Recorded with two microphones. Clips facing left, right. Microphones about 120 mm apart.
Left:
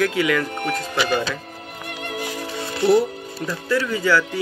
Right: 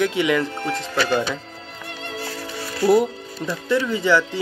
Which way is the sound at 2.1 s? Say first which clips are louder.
Left 3 dB; 15° left (ahead or behind).